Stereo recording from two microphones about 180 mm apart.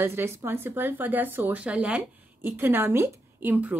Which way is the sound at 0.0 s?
15° right (ahead or behind).